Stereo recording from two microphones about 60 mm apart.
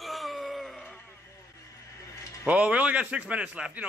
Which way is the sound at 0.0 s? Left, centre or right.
Centre.